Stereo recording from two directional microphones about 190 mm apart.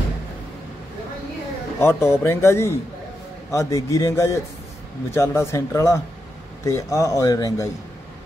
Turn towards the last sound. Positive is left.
turn(degrees=20)  # may be behind; listen again after turning